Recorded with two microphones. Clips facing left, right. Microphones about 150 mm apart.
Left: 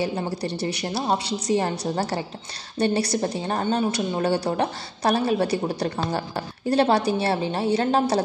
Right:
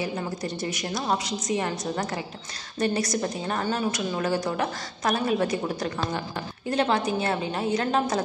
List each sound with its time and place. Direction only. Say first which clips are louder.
0.0 s a woman's voice: left 4 dB; 30° left (ahead or behind)